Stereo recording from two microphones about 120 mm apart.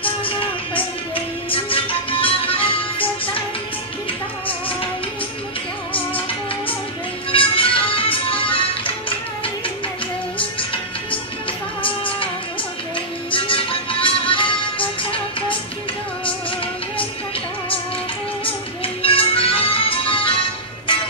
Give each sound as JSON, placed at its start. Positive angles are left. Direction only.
{"t": 0.2, "sound": "music", "side_deg": 45}
{"t": 7.2, "sound": "music", "side_deg": 50}
{"t": 10.4, "sound": "music", "side_deg": 45}
{"t": 13.3, "sound": "music", "side_deg": 45}
{"t": 19.0, "sound": "music", "side_deg": 50}